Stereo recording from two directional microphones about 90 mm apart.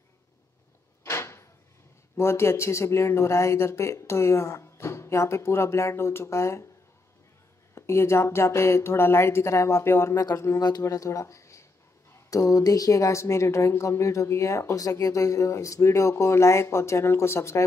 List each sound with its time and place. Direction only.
1.0 s a sound: 30° left (ahead or behind)
2.1 s a woman's voice: 30° left (ahead or behind)
7.7 s a woman's voice: 30° left (ahead or behind)